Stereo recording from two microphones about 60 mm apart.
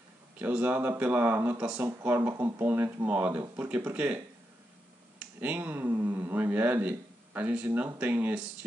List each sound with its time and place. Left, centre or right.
0.4 s speech: right
3.1 s speech: right
5.4 s speech: right